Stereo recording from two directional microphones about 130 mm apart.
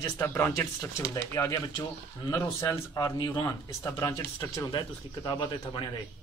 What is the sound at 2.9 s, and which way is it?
Speech, 30° left (ahead or behind).